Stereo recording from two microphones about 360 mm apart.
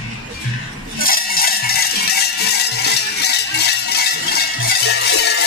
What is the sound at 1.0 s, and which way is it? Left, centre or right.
Music, left.